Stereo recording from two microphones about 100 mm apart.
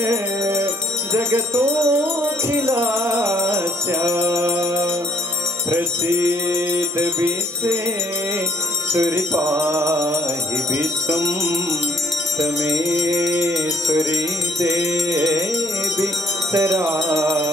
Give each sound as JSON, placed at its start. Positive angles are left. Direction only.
{"t": 0.0, "sound": "music", "side_deg": -25}
{"t": 8.9, "sound": "music", "side_deg": -30}
{"t": 12.4, "sound": "music", "side_deg": -35}
{"t": 16.5, "sound": "music", "side_deg": -30}